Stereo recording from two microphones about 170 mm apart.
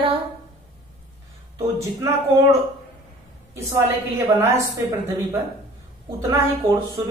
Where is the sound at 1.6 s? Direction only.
15° right (ahead or behind).